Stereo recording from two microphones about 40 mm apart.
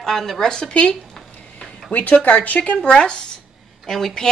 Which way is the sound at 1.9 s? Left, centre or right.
Left.